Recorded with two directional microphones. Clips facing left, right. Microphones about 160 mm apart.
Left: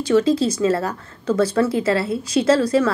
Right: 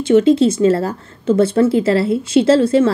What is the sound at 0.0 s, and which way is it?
A woman's voice, 25° right (ahead or behind).